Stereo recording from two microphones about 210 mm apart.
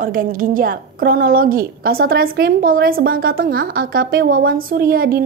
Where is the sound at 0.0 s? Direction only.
40° right (ahead or behind).